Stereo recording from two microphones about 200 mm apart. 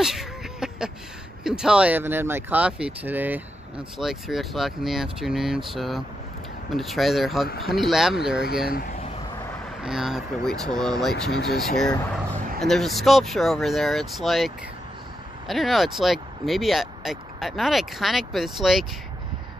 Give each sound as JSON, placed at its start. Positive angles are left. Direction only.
{"t": 0.0, "sound": "a sound", "side_deg": 0}
{"t": 1.4, "sound": "speech", "side_deg": -5}
{"t": 8.6, "sound": "speech", "side_deg": 45}
{"t": 9.8, "sound": "speech", "side_deg": 0}